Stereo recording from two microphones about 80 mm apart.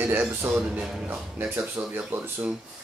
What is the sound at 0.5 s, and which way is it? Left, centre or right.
A man's voice, centre.